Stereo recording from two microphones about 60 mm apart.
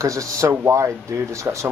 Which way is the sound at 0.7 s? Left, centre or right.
Right.